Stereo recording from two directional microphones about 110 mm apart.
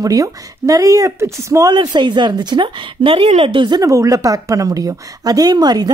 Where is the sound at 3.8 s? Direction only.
30° right (ahead or behind).